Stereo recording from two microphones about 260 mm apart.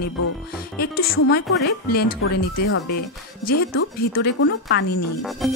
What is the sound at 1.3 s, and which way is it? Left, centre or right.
Speech, left.